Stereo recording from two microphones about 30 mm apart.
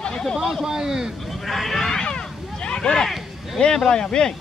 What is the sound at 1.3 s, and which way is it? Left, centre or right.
Speech, centre.